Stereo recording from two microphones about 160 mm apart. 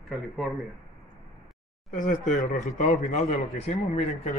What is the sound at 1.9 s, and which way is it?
Speech, 55° left (ahead or behind).